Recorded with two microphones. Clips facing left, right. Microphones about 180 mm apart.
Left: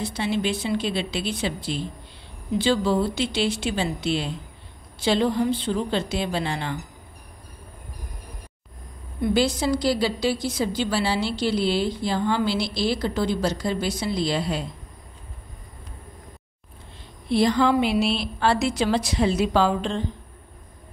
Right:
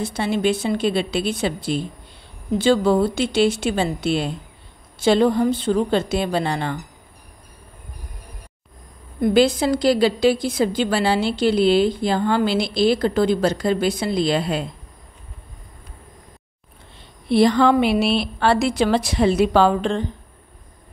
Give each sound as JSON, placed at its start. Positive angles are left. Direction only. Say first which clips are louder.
{"t": 0.0, "sound": "a woman's voice", "louder": "right 4 dB", "side_deg": -50}
{"t": 9.2, "sound": "a woman's voice", "louder": "right 5 dB", "side_deg": -55}
{"t": 17.3, "sound": "a woman's voice", "louder": "right 4 dB", "side_deg": -65}